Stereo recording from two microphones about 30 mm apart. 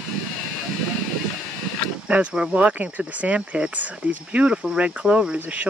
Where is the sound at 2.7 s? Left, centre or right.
Right.